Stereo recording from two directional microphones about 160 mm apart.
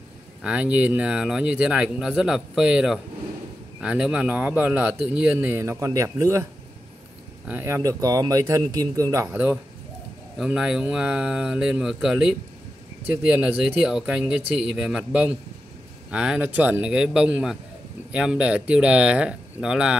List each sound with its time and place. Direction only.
0.4 s a man's voice: 5° right (ahead or behind)
7.4 s speech: 15° right (ahead or behind)